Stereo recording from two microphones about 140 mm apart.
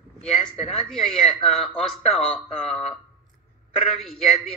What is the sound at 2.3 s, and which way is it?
Speech, 45° left (ahead or behind).